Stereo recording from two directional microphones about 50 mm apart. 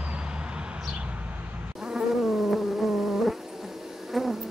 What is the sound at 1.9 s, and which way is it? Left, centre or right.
Insect, centre.